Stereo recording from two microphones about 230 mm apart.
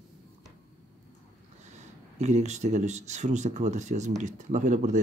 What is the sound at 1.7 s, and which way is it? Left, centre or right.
Speech, right.